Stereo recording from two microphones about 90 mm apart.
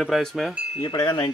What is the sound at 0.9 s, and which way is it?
Speech, 55° left (ahead or behind).